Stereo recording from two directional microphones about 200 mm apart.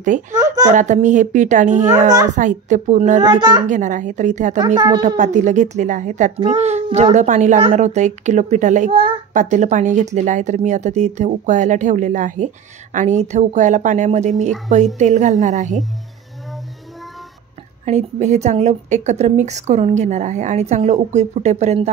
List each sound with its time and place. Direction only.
0.3 s speech: 15° right (ahead or behind)
0.7 s a woman's voice: 35° right (ahead or behind)
3.3 s a child's voice: 20° right (ahead or behind)
3.6 s a woman's voice: 40° right (ahead or behind)
4.7 s a child's voice: 20° right (ahead or behind)
5.0 s a woman's voice: 35° right (ahead or behind)
17.8 s a woman's voice: 35° right (ahead or behind)